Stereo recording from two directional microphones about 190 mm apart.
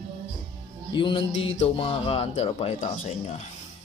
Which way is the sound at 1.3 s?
80° left.